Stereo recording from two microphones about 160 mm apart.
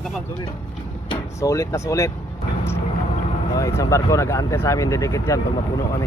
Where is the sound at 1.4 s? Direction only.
20° left (ahead or behind).